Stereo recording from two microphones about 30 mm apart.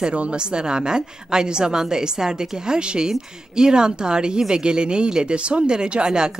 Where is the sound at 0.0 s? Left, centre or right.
Right.